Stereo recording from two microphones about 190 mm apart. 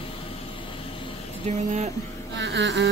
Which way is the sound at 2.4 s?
70° right (ahead or behind).